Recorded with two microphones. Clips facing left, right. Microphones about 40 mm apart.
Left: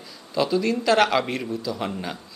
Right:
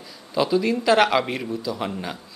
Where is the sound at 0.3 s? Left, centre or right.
Centre.